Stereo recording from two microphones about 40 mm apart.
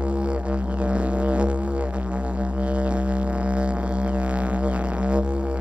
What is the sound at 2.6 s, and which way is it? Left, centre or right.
Music, right.